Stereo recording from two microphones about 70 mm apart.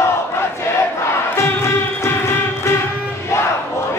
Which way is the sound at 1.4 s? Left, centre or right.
Left.